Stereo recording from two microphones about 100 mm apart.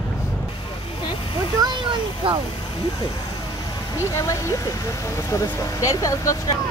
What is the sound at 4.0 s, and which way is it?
Speech, 35° left (ahead or behind).